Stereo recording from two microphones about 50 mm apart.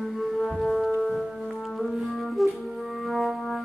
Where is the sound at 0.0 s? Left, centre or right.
Centre.